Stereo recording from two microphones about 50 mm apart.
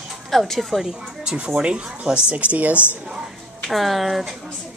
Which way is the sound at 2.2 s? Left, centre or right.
Right.